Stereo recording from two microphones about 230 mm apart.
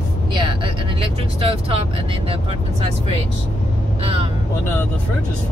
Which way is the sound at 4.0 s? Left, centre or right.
Right.